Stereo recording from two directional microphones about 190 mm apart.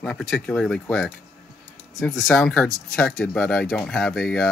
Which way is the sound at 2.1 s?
Centre (ahead or behind).